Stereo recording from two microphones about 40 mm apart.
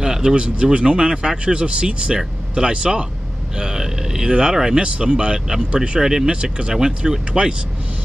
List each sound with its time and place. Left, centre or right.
0.0 s speech: centre
4.3 s speech: right
5.8 s speech: centre